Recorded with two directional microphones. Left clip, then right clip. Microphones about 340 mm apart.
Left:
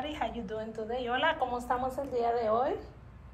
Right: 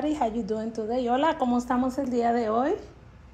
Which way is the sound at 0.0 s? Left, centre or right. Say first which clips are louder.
Right 8 dB; centre.